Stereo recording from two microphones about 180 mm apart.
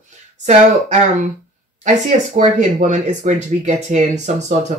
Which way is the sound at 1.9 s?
40° right (ahead or behind).